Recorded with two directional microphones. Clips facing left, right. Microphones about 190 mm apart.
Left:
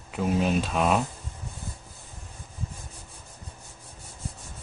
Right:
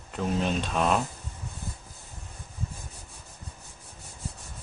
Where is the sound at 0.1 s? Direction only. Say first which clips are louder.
Left 3 dB; 5° left (ahead or behind).